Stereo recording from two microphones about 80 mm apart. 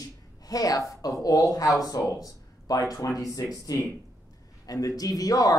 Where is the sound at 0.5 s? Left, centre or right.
Left.